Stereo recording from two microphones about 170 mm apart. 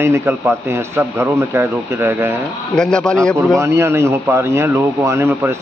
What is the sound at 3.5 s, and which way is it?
A man's voice, 15° right (ahead or behind).